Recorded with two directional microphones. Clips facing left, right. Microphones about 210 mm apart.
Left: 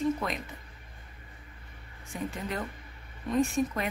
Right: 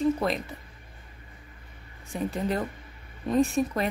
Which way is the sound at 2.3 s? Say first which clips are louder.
Right 7 dB; 35° right (ahead or behind).